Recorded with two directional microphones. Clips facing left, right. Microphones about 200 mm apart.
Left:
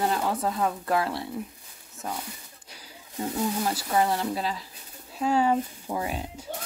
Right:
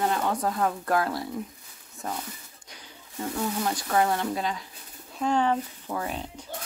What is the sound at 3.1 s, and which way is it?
Speech, 20° left (ahead or behind).